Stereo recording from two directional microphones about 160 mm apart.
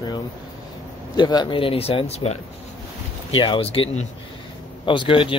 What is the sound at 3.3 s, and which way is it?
Speech, 30° left (ahead or behind).